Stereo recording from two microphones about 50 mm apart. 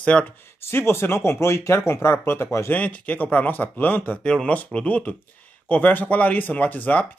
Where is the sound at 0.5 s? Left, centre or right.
Left.